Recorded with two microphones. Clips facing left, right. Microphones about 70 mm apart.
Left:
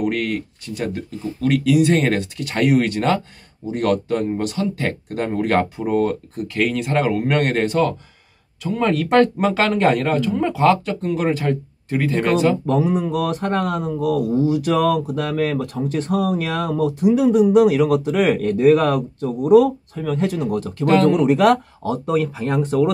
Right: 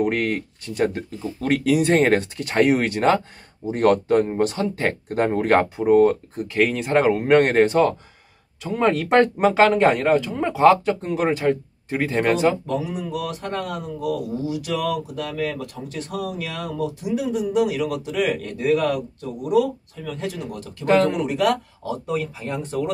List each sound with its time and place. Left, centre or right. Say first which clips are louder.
0.0 s speech: even; right
12.6 s speech: left 7 dB; left
20.8 s speech: left 3 dB; centre
21.3 s speech: left 6 dB; left